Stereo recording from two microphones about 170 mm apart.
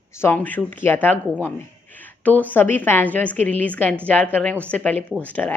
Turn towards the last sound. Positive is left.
turn(degrees=10)  # may be behind; listen again after turning